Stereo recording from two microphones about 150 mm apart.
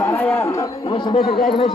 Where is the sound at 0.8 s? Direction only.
35° left (ahead or behind).